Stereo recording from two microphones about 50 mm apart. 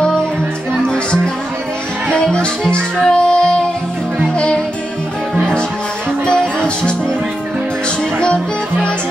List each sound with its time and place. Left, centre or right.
0.8 s music: centre
2.3 s music: centre
6.2 s music: centre